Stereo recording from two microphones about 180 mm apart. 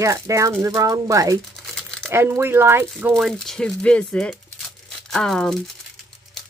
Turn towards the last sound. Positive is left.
turn(degrees=0)  # may be behind; listen again after turning